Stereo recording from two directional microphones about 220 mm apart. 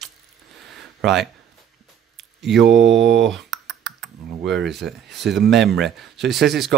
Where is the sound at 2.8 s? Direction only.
55° right (ahead or behind).